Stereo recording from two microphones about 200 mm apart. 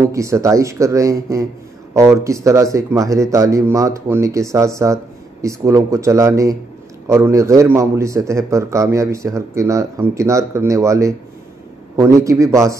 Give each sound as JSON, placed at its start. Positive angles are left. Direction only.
{"t": 0.1, "sound": "a man's voice", "side_deg": -15}